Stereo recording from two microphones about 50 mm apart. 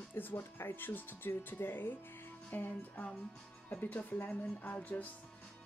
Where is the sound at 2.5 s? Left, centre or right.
Left.